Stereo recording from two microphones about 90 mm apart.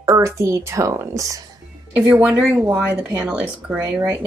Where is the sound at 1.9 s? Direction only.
20° right (ahead or behind).